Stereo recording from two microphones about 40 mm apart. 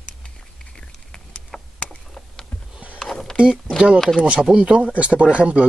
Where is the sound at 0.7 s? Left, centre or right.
Centre.